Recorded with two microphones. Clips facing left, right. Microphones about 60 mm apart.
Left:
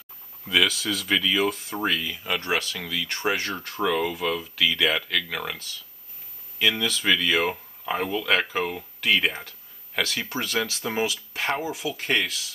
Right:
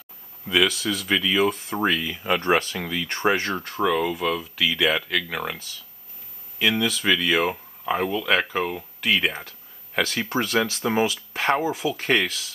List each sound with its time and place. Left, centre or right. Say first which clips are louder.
0.5 s speech: right 2 dB; centre
2.4 s speech: right 5 dB; right
3.4 s speech: right 3 dB; centre
11.1 s speech: right 4 dB; centre